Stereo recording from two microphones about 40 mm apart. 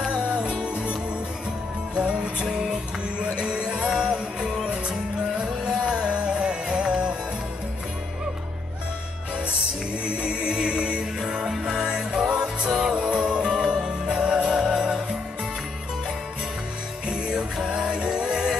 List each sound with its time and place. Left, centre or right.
0.0 s music: right
2.0 s music: right
2.4 s music: centre
3.2 s music: right
10.0 s music: right
17.1 s music: centre
17.8 s music: right